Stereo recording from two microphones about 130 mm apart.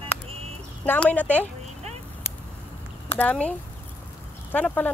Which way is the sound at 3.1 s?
10° left (ahead or behind).